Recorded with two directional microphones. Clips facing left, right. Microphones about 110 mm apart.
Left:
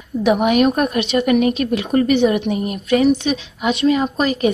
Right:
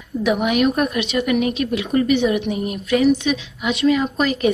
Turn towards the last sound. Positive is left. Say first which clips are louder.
# left 1 dB
turn(degrees=35)  # may be behind; listen again after turning